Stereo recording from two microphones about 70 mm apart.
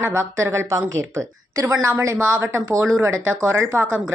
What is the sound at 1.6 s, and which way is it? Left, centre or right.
A woman's voice, right.